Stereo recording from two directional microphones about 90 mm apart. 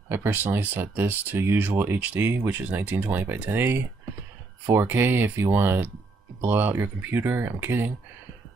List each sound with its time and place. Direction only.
0.1 s speech: 25° right (ahead or behind)